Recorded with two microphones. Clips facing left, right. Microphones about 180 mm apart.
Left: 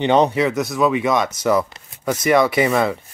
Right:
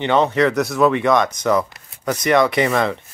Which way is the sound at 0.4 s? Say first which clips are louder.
Right 2 dB; centre (ahead or behind).